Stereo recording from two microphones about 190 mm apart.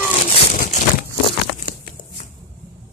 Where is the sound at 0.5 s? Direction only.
45° left (ahead or behind).